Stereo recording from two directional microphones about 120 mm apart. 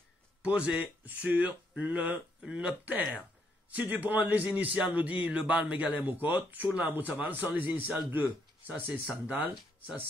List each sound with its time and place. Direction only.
0.4 s speech: 10° right (ahead or behind)